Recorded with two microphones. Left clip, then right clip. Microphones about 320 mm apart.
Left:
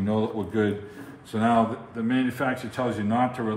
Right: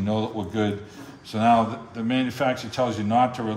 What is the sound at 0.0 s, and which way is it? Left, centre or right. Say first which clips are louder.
Speech: even; centre.